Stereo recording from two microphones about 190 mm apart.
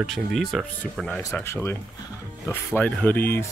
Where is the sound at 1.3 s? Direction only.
15° left (ahead or behind).